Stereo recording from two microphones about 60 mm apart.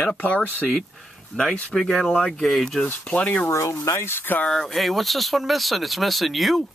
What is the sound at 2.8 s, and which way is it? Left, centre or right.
Speech, centre.